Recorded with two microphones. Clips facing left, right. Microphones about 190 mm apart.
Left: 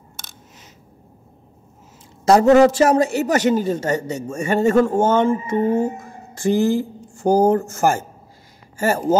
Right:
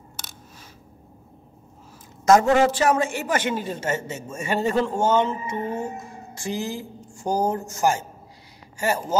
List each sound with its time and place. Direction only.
2.2 s speech: 35° left (ahead or behind)